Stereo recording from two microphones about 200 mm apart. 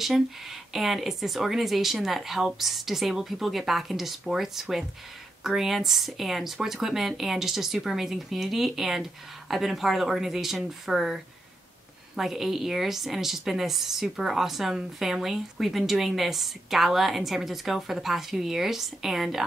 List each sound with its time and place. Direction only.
0.0 s a woman's voice: centre (ahead or behind)